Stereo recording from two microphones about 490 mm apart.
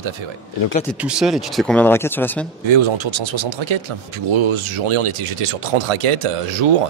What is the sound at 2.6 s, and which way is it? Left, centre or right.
Speech, right.